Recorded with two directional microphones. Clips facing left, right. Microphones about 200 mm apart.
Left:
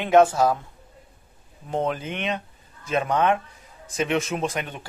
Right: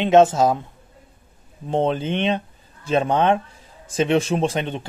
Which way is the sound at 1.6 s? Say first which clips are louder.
Right 5 dB; 25° right (ahead or behind).